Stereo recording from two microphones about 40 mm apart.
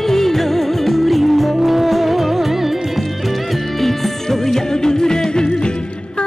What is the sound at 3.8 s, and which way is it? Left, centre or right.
Music, centre.